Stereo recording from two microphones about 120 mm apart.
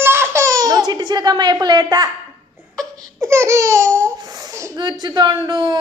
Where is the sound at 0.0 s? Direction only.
20° right (ahead or behind); by 2.0 s 35° right (ahead or behind).